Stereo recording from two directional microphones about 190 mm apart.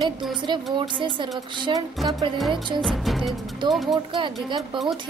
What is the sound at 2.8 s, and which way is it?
Music, centre (ahead or behind).